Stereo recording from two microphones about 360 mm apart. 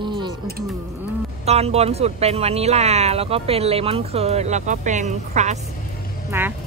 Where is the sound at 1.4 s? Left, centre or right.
Centre.